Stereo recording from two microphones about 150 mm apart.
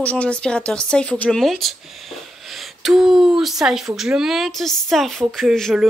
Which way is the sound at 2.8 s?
5° right (ahead or behind).